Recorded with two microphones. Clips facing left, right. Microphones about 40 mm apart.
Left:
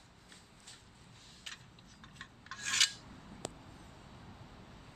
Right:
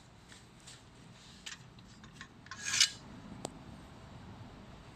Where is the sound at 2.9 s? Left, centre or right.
Centre.